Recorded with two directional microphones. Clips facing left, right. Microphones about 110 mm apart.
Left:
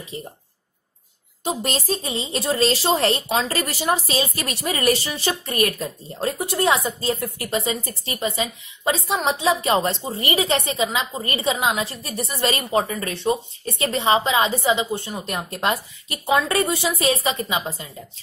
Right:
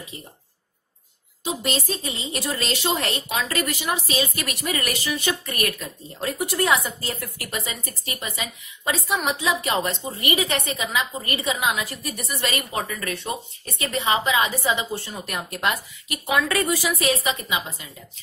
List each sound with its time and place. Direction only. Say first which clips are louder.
0.1 s a woman's voice: left 12 dB; 30° left (ahead or behind)
1.4 s a woman's voice: left 2 dB; 40° left (ahead or behind)